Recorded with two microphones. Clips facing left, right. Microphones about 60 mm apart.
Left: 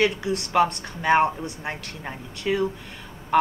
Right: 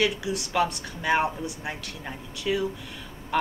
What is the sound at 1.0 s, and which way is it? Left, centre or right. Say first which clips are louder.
Speech: left 5 dB; left.